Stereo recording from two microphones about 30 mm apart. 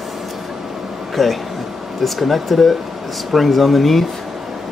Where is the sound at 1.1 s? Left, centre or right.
Centre.